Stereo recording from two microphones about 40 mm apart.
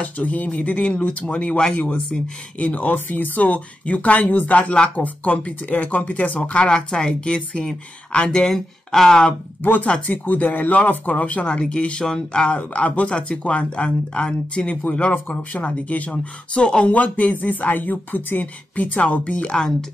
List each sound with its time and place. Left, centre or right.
0.0 s speech: left
2.6 s speech: left
4.2 s speech: left
6.6 s a woman's voice: left
8.3 s speech: centre
9.6 s speech: left
9.8 s a woman's voice: left
10.1 s a woman's voice: left
15.5 s speech: left
16.1 s a woman's voice: left
16.9 s speech: left
19.3 s a woman's voice: left